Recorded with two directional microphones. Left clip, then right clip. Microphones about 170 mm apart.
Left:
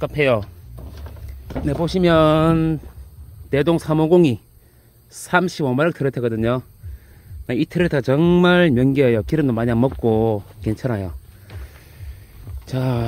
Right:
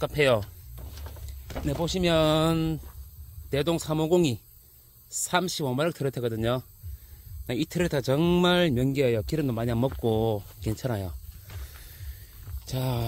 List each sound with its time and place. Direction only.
0.0 s speech: 40° right (ahead or behind)
1.5 s speech: 25° right (ahead or behind)
1.9 s speech: 10° right (ahead or behind)
11.5 s music: 30° right (ahead or behind)
12.6 s speech: 15° right (ahead or behind)